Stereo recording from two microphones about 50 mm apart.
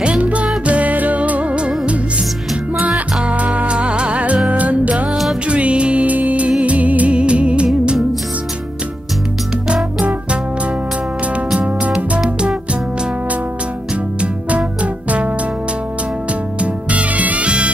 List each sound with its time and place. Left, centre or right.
0.2 s music: right
3.3 s music: right
11.5 s music: right
14.2 s music: right
16.5 s music: right